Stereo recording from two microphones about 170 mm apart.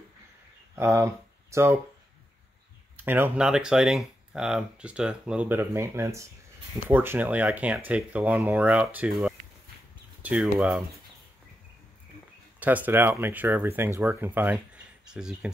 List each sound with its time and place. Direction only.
0.7 s speech: 15° right (ahead or behind)
3.1 s speech: 10° right (ahead or behind)
12.5 s speech: 10° right (ahead or behind)